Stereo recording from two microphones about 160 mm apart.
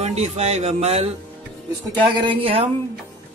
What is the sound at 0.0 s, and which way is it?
Speech, 45° right (ahead or behind).